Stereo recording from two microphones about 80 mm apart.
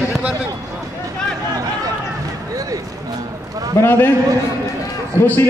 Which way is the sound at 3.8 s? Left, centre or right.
Left.